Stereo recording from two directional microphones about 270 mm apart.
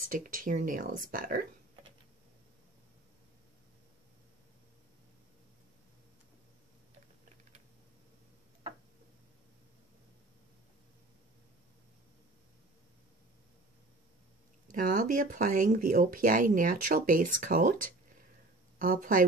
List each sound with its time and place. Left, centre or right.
0.1 s speech: right
14.7 s speech: right